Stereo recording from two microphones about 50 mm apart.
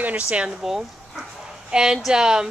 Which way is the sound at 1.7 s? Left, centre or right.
Centre.